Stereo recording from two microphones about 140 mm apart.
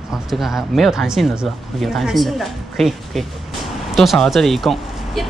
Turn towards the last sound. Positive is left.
turn(degrees=0)  # may be behind; listen again after turning